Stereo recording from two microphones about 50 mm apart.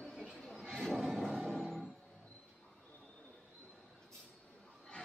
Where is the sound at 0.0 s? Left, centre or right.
Centre.